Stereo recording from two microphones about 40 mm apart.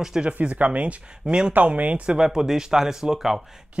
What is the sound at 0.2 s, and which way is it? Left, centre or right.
Speech, right.